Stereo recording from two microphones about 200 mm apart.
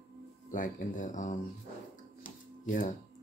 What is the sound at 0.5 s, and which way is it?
Speech, 40° left (ahead or behind).